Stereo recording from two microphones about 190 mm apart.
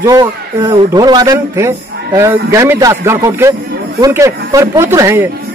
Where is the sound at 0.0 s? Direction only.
20° right (ahead or behind).